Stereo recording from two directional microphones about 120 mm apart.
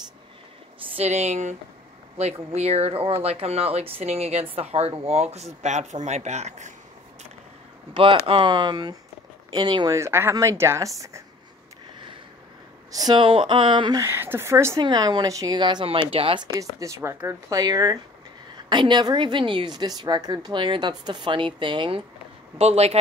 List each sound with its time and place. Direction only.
0.9 s speech: 70° right (ahead or behind)
2.1 s speech: 60° right (ahead or behind)
7.9 s a woman's voice: 45° right (ahead or behind); by 11.2 s 25° right (ahead or behind)
12.9 s speech: 40° right (ahead or behind)
14.0 s speech: 20° right (ahead or behind)
14.8 s a woman's voice: 35° right (ahead or behind); by 16.4 s 50° right (ahead or behind)
16.5 s a woman's voice: 25° right (ahead or behind); by 22.0 s 45° right (ahead or behind)
22.6 s speech: 60° right (ahead or behind)